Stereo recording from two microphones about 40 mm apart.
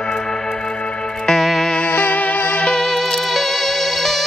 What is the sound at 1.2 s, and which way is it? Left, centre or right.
Music, centre.